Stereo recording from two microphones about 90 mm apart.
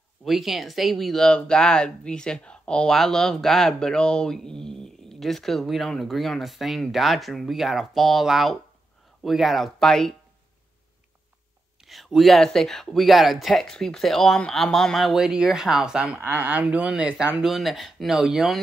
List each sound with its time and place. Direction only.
0.2 s speech: centre (ahead or behind)
11.8 s speech: centre (ahead or behind)
16.2 s speech: 20° right (ahead or behind)
17.5 s speech: centre (ahead or behind)